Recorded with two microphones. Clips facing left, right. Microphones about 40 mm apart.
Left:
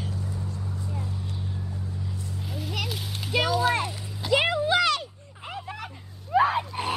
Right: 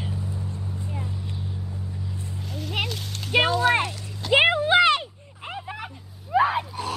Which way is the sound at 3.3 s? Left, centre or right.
Right.